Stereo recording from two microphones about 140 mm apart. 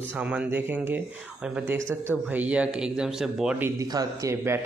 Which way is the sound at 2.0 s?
10° right (ahead or behind).